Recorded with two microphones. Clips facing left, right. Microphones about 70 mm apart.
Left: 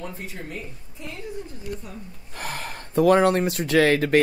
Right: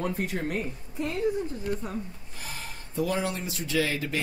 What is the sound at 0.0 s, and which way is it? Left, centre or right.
Speech, right.